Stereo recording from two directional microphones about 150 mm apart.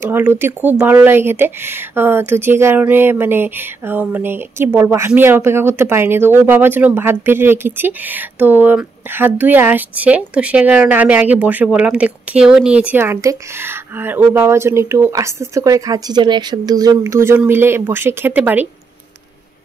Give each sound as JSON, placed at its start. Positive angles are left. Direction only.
{"t": 0.0, "sound": "speech", "side_deg": -15}